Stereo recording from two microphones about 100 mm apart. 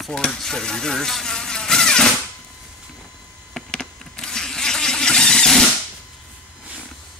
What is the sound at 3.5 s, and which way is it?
Vehicle, 5° left (ahead or behind).